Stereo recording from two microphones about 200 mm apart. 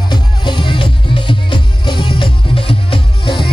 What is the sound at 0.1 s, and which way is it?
Music, 25° left (ahead or behind).